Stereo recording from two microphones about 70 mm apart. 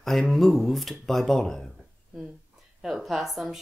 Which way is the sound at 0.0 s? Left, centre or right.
Centre.